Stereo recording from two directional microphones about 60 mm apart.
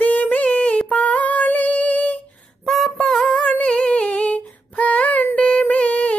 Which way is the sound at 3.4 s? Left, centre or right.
Left.